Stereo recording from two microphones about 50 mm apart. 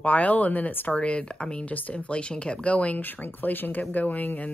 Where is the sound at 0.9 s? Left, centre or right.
Left.